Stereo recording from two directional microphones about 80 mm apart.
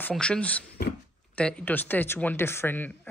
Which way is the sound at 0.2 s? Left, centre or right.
Centre.